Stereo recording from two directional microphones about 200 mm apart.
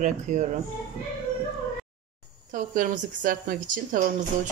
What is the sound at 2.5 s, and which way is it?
A woman's voice, 40° right (ahead or behind).